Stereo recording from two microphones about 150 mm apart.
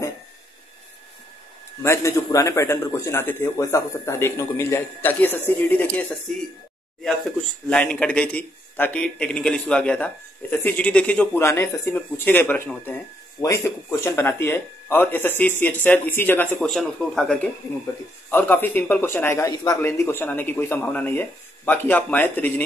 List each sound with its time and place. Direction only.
1.8 s speech: 20° left (ahead or behind)
7.6 s speech: 10° left (ahead or behind)